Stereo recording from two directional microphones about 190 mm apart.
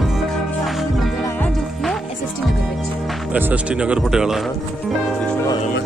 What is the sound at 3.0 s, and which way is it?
Speech, 5° right (ahead or behind).